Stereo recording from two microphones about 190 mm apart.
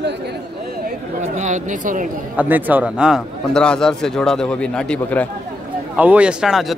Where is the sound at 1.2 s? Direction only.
40° right (ahead or behind).